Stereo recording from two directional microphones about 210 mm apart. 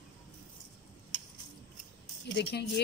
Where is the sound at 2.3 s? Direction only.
55° left (ahead or behind).